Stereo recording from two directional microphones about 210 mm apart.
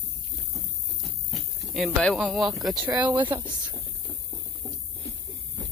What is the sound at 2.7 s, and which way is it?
Speech, 20° right (ahead or behind).